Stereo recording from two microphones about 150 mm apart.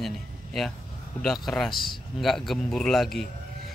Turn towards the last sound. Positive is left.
turn(degrees=0)  # may be behind; listen again after turning